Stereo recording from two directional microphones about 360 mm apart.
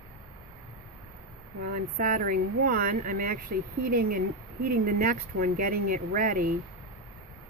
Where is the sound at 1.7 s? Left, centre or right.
Right.